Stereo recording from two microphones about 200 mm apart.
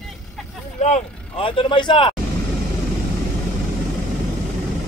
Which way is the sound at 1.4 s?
25° left (ahead or behind).